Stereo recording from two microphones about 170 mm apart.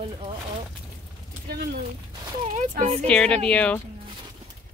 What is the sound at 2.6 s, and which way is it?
Speech, 40° right (ahead or behind).